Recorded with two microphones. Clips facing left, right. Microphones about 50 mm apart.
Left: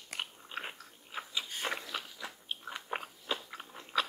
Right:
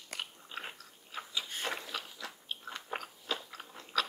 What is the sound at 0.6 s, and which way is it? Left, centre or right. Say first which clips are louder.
Dog: left 2 dB; centre.